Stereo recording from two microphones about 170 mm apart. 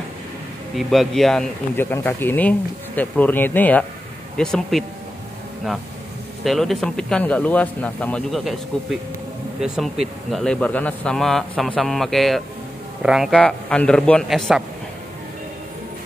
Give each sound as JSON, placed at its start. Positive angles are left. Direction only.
{"t": 0.7, "sound": "a man's voice", "side_deg": 0}
{"t": 6.4, "sound": "a man's voice", "side_deg": 0}
{"t": 9.6, "sound": "a man's voice", "side_deg": 0}